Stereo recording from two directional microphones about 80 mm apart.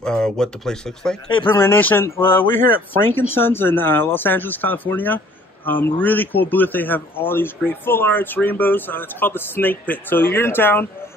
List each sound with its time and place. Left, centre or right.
0.0 s speech: centre
1.5 s a man's voice: left